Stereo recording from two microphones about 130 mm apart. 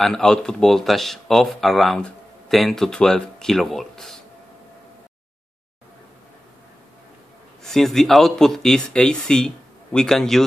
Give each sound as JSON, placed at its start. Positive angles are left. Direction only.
{"t": 0.0, "sound": "speech", "side_deg": 5}
{"t": 7.6, "sound": "speech", "side_deg": 5}